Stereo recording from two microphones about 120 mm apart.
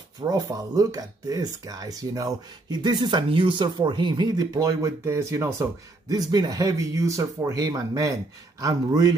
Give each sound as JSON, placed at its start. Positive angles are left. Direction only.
{"t": 0.2, "sound": "speech", "side_deg": -30}